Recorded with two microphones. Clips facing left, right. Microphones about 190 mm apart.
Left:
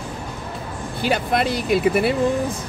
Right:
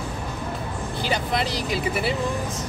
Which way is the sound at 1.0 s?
55° left (ahead or behind).